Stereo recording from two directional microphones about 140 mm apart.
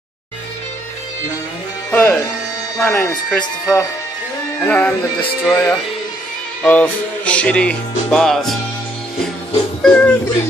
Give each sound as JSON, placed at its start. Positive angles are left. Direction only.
{"t": 1.9, "sound": "speech", "side_deg": 10}
{"t": 3.1, "sound": "speech", "side_deg": 0}
{"t": 4.6, "sound": "speech", "side_deg": 15}
{"t": 9.8, "sound": "speech", "side_deg": 10}